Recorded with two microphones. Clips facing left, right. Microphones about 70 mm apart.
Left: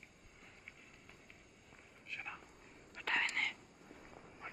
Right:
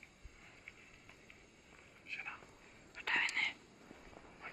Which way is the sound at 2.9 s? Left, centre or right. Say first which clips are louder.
Even; centre.